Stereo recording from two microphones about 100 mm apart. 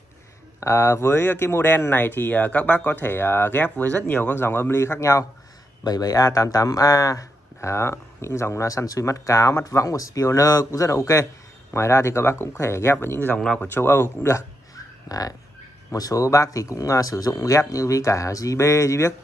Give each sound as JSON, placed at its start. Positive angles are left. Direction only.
{"t": 0.6, "sound": "speech", "side_deg": 25}
{"t": 5.9, "sound": "speech", "side_deg": 40}
{"t": 15.0, "sound": "speech", "side_deg": 35}